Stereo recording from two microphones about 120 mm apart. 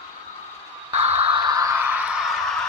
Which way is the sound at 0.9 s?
65° right (ahead or behind).